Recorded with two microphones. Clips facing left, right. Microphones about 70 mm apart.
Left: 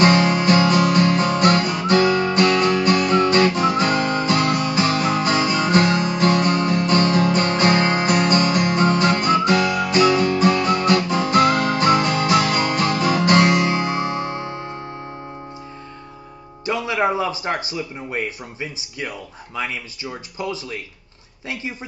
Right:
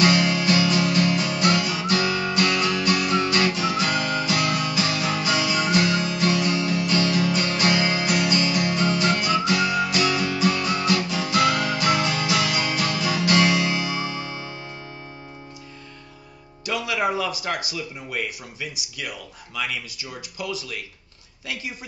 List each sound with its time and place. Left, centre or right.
0.0 s music: left
16.6 s speech: left